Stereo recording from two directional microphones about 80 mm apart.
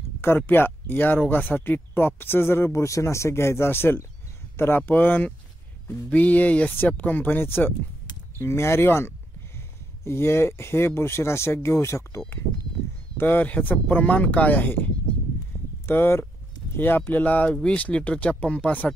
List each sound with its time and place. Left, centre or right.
0.5 s speech: left
13.2 s speech: left
15.9 s speech: left